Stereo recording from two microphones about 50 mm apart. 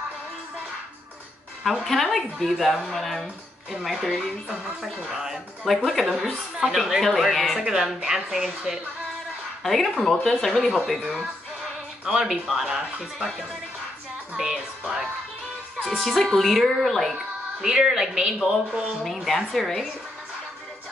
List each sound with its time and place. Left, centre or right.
1.6 s a woman's voice: centre
7.6 s a man's voice: centre
9.6 s a woman's voice: centre
12.0 s a man's voice: centre
15.8 s a woman's voice: centre
17.6 s a man's voice: centre
19.2 s a woman's voice: centre